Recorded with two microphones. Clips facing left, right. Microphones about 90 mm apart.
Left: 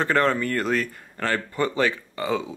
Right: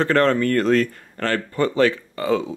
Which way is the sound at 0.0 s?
10° left (ahead or behind).